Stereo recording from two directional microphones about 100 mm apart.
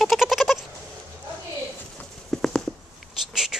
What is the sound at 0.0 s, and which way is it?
Goat, centre (ahead or behind).